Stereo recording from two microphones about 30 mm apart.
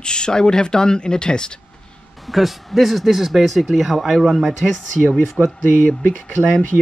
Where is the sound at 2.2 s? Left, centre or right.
Centre.